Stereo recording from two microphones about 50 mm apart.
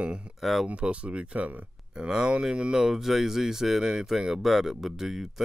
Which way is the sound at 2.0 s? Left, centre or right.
Centre.